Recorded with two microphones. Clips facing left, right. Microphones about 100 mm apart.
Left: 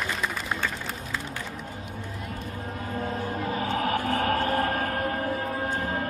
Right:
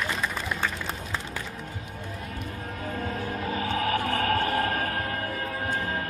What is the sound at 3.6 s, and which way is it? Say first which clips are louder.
Music: even; 35° left (ahead or behind).